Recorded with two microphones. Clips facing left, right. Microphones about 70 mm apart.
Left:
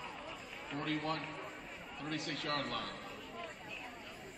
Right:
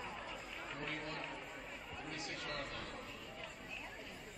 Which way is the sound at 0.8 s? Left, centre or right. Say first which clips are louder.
Left 8 dB; left.